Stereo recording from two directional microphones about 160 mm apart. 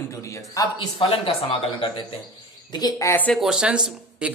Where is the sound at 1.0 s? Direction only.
35° left (ahead or behind); by 3.3 s 15° left (ahead or behind).